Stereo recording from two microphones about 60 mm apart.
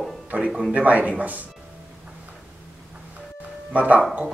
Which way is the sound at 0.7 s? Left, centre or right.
Right.